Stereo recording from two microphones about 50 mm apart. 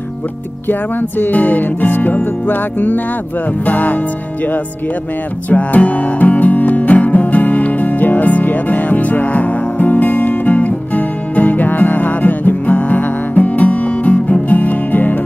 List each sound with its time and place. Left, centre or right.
0.7 s music: left
5.5 s music: left